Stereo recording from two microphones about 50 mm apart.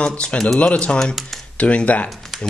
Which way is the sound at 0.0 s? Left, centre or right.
Left.